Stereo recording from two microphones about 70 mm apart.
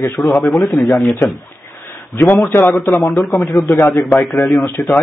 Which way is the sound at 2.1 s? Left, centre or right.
Left.